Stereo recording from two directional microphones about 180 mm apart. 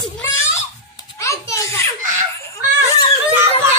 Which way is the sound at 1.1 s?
15° left (ahead or behind).